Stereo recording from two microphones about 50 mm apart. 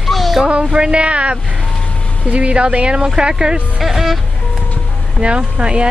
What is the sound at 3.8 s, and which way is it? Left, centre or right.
Speech, centre.